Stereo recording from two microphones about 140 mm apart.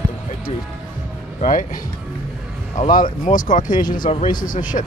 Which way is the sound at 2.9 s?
75° left (ahead or behind).